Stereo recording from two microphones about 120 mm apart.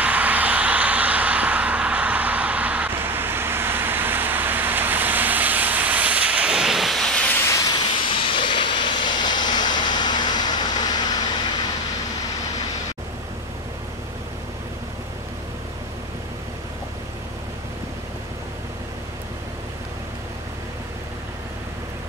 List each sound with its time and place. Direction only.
0.0 s vehicle: 10° right (ahead or behind); by 7.5 s 15° left (ahead or behind)
7.5 s a sound: 35° left (ahead or behind)
8.3 s vehicle: 45° left (ahead or behind)